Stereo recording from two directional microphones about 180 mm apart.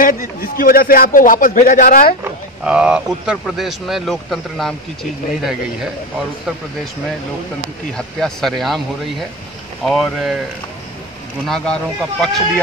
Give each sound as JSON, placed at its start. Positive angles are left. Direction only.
{"t": 0.0, "sound": "a man's voice", "side_deg": 50}
{"t": 2.6, "sound": "speech", "side_deg": -5}
{"t": 8.2, "sound": "speech", "side_deg": 0}
{"t": 9.8, "sound": "speech", "side_deg": 0}
{"t": 11.4, "sound": "speech", "side_deg": 5}